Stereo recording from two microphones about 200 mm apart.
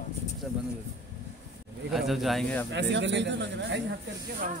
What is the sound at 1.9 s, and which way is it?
Speech, centre (ahead or behind).